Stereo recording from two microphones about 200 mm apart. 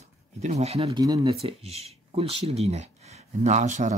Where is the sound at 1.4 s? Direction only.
30° right (ahead or behind).